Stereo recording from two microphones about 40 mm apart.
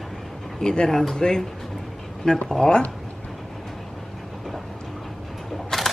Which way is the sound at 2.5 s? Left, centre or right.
Centre.